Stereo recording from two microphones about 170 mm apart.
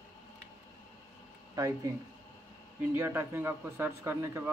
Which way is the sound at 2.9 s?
15° right (ahead or behind).